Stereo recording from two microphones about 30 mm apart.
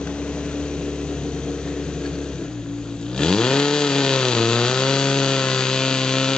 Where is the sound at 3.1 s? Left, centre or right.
Left.